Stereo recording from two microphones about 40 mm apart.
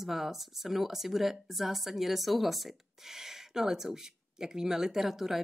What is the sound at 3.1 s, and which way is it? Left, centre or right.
Speech, centre.